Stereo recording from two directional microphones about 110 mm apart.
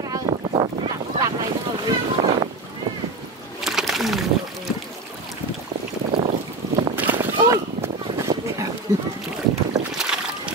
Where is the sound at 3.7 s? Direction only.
Centre (ahead or behind).